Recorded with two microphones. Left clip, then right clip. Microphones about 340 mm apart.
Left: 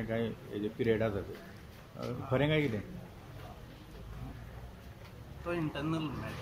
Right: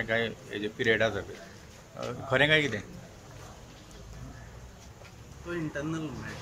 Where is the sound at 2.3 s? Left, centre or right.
Right.